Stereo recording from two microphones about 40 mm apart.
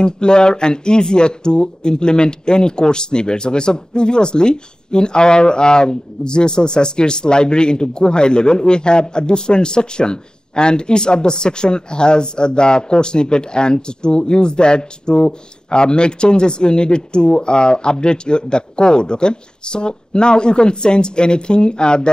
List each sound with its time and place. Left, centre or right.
0.0 s speech: left